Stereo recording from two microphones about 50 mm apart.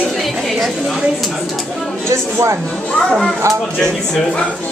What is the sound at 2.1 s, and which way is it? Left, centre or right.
Speech, right.